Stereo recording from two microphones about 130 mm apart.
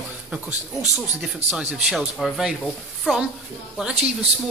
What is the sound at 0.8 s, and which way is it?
Speech, 60° right (ahead or behind).